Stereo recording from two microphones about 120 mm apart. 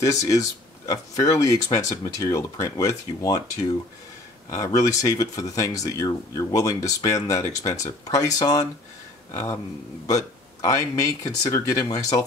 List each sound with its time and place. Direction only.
0.0 s speech: 30° left (ahead or behind)